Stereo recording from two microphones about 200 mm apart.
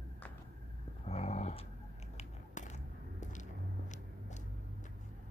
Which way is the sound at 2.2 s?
35° left (ahead or behind).